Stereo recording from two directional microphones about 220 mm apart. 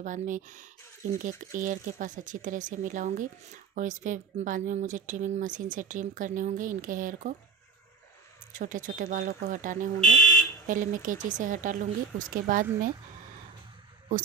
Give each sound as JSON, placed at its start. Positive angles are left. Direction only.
{"t": 0.0, "sound": "speech", "side_deg": -35}
{"t": 8.5, "sound": "speech", "side_deg": -35}
{"t": 9.9, "sound": "speech", "side_deg": 5}
{"t": 10.7, "sound": "speech", "side_deg": -35}